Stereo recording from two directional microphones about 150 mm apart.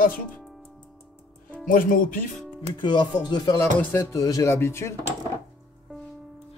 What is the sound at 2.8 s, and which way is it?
Music, 30° left (ahead or behind).